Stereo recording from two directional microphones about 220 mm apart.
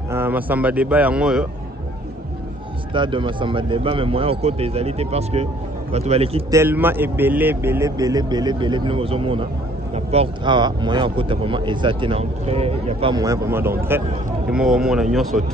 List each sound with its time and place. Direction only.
0.1 s a man's voice: 10° right (ahead or behind)
2.9 s speech: 20° right (ahead or behind)
6.5 s a man's voice: 10° right (ahead or behind)